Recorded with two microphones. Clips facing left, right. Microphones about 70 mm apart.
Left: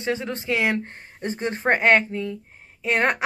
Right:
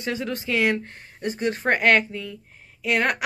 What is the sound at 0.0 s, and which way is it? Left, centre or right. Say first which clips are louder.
A woman's voice: left 1 dB; left.